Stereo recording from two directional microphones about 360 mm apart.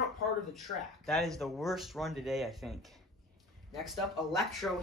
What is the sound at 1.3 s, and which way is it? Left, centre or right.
Speech, centre.